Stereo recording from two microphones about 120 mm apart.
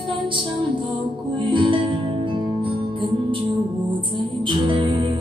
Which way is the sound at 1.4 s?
45° right (ahead or behind).